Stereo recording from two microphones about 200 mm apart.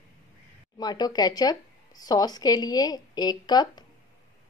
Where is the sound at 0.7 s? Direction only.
20° left (ahead or behind).